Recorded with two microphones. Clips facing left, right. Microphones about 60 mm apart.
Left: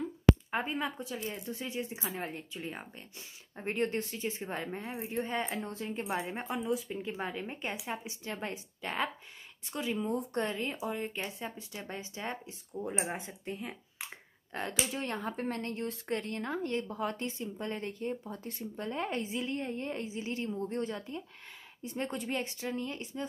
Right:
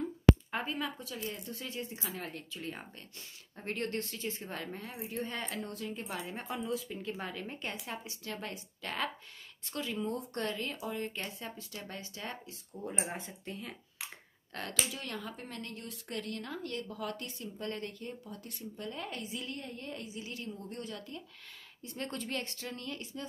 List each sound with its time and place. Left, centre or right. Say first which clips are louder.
0.5 s speech: left 3 dB; centre
6.3 s speech: left 3 dB; centre
14.9 s speech: left 5 dB; left